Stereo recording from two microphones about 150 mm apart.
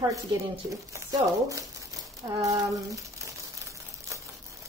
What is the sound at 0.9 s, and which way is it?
Speech, 20° right (ahead or behind).